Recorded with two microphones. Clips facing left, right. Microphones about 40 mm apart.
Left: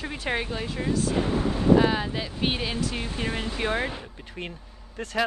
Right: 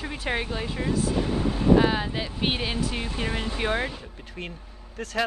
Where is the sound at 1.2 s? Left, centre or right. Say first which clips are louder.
Left 1 dB; left.